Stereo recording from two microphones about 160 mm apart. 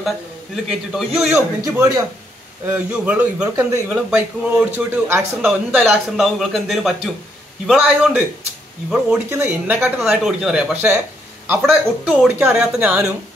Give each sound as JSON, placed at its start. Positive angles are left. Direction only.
{"t": 0.7, "sound": "a man's voice", "side_deg": 0}
{"t": 1.6, "sound": "a man's voice", "side_deg": -20}
{"t": 8.9, "sound": "speech", "side_deg": -15}